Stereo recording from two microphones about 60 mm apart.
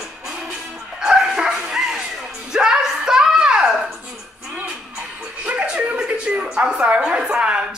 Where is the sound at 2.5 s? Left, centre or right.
Centre.